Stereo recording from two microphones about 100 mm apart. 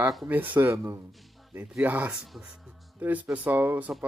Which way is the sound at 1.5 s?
15° right (ahead or behind).